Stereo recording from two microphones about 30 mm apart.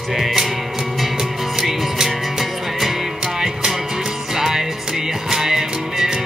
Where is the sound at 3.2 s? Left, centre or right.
Centre.